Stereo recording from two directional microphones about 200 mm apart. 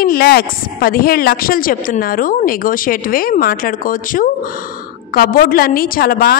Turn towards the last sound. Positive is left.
turn(degrees=45)  # may be behind; listen again after turning